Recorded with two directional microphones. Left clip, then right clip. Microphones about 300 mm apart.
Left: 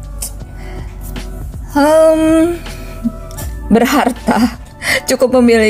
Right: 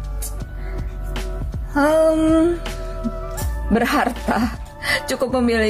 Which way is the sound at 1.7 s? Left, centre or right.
Centre.